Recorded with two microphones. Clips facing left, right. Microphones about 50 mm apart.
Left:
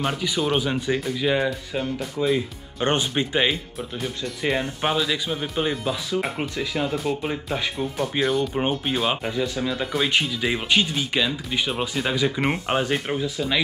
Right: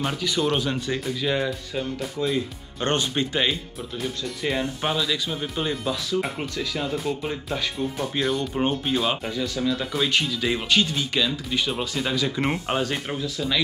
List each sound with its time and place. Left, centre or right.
0.0 s speech: centre
8.2 s speech: centre